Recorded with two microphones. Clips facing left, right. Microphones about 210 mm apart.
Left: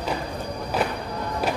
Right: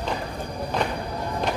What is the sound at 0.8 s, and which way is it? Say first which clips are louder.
Music: even; 5° left (ahead or behind).